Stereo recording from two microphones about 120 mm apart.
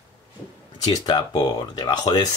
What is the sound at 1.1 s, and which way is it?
Speech, 40° left (ahead or behind).